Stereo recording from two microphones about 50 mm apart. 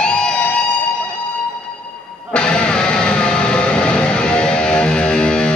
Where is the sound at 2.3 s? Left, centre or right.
Centre.